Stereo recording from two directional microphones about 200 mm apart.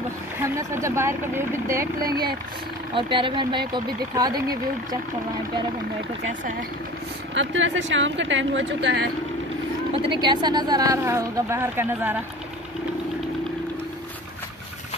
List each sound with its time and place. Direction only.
0.4 s speech: 15° right (ahead or behind)
2.0 s speech: 50° right (ahead or behind)
2.9 s speech: 25° right (ahead or behind)
7.3 s speech: 70° right (ahead or behind)
9.9 s speech: 25° right (ahead or behind)